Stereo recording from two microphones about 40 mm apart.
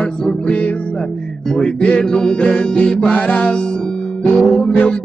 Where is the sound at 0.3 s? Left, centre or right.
Left.